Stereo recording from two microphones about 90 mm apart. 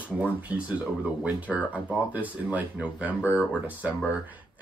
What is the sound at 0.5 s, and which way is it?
Speech, 10° right (ahead or behind).